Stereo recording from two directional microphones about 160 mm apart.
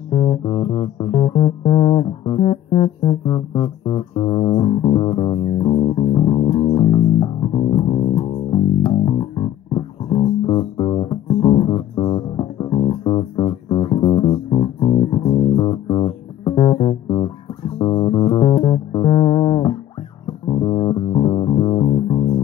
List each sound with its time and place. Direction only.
0.1 s music: 30° left (ahead or behind)